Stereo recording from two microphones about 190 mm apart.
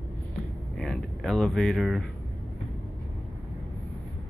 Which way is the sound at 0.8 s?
Centre (ahead or behind).